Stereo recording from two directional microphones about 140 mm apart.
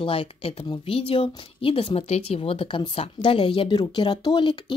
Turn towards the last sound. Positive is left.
turn(degrees=35)  # may be behind; listen again after turning